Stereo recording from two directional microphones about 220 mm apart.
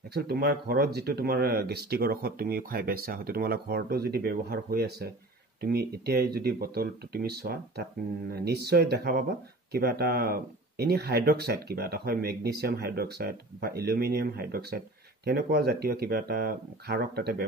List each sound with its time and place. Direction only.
0.1 s speech: 45° right (ahead or behind)